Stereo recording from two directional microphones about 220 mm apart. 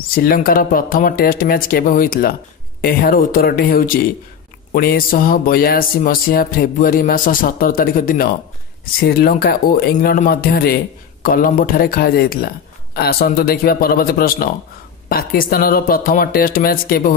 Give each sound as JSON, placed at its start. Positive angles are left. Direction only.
{"t": 0.0, "sound": "music", "side_deg": 40}
{"t": 9.0, "sound": "speech", "side_deg": 45}
{"t": 11.2, "sound": "music", "side_deg": 40}